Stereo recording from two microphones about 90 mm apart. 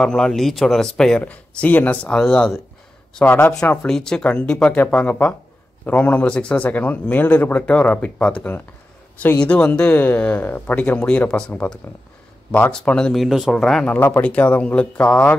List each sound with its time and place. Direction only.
0.0 s speech: 5° left (ahead or behind)
2.1 s speech: 5° left (ahead or behind)
3.3 s speech: 20° left (ahead or behind)
3.8 s speech: 5° left (ahead or behind)
13.8 s speech: 20° left (ahead or behind)